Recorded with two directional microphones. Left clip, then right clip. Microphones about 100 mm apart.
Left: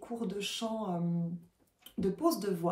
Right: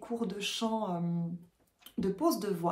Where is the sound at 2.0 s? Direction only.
25° right (ahead or behind).